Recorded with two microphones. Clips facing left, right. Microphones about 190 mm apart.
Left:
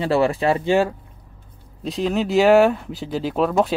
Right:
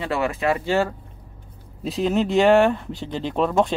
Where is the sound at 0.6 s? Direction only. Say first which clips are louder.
Left 3 dB; 15° left (ahead or behind).